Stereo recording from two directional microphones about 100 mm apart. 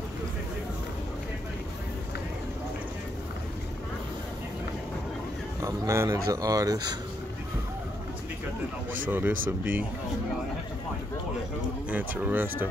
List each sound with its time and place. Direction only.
5.6 s speech: 30° right (ahead or behind)
9.1 s speech: 20° right (ahead or behind)
11.9 s speech: 15° right (ahead or behind)